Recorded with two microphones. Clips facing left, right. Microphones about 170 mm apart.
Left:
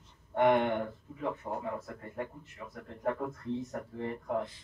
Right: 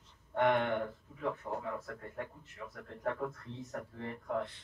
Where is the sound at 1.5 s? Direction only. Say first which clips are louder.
Left 2 dB; 25° left (ahead or behind).